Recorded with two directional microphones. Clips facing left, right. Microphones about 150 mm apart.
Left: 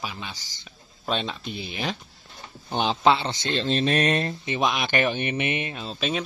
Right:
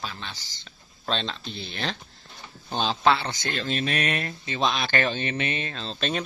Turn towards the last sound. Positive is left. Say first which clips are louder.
# left 1 dB
turn(degrees=5)  # may be behind; listen again after turning